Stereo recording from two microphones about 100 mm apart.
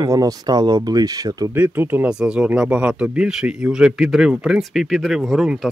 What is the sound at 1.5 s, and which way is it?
Speech, 20° right (ahead or behind).